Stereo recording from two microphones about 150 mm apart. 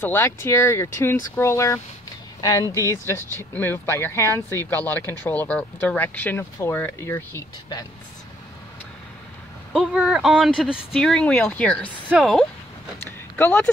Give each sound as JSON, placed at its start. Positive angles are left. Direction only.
{"t": 0.0, "sound": "speech", "side_deg": 15}
{"t": 9.7, "sound": "speech", "side_deg": -5}
{"t": 13.4, "sound": "speech", "side_deg": 15}